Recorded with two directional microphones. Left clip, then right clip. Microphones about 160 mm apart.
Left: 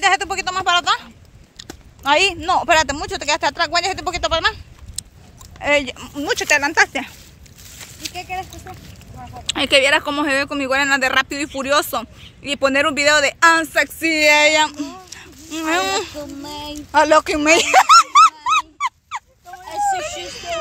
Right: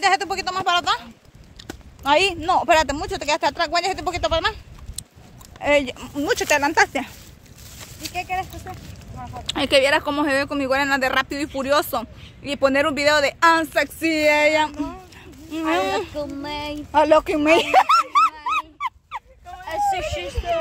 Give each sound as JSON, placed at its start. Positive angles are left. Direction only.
{"t": 0.0, "sound": "speech", "side_deg": 10}
{"t": 6.2, "sound": "speech", "side_deg": -20}
{"t": 8.2, "sound": "speech", "side_deg": -10}
{"t": 9.5, "sound": "speech", "side_deg": 5}
{"t": 16.2, "sound": "speech", "side_deg": 10}
{"t": 16.9, "sound": "speech", "side_deg": 25}
{"t": 18.4, "sound": "dog", "side_deg": 25}
{"t": 19.7, "sound": "a sound", "side_deg": 30}